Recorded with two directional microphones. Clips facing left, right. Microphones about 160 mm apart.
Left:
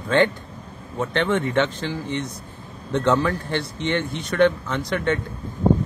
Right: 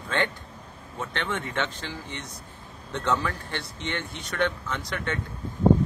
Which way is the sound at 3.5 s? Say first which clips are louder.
Left 9 dB; 70° left (ahead or behind).